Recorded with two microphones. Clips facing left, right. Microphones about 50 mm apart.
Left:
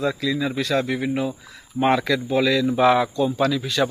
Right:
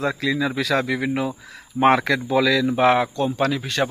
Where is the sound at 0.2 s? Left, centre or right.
Right.